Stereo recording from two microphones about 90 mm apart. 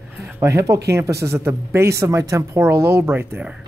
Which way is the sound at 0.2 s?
35° right (ahead or behind).